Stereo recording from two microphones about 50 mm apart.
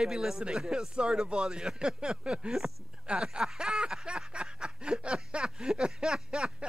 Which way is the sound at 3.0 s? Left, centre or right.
Centre.